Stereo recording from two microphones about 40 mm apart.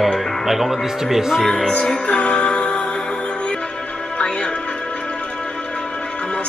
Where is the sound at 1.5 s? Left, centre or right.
Left.